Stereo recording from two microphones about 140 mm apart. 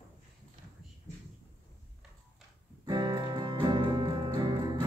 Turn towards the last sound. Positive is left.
turn(degrees=-30)  # may be behind; listen again after turning